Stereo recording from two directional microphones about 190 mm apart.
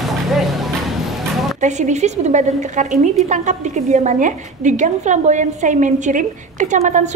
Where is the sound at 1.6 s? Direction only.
40° right (ahead or behind).